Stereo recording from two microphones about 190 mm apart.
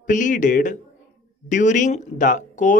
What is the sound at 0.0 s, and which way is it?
A man's voice, 40° left (ahead or behind).